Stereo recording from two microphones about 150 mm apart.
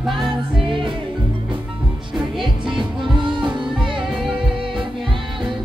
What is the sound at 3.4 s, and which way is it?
Music, 35° right (ahead or behind).